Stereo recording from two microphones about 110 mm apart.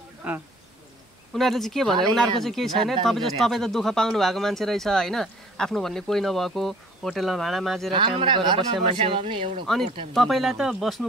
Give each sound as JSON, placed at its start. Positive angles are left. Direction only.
{"t": 0.2, "sound": "speech", "side_deg": -15}
{"t": 1.3, "sound": "speech", "side_deg": 0}
{"t": 8.2, "sound": "speech", "side_deg": -45}
{"t": 10.1, "sound": "speech", "side_deg": 0}